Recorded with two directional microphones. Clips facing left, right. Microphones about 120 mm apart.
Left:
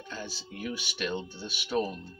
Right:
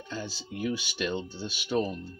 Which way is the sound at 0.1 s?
25° right (ahead or behind).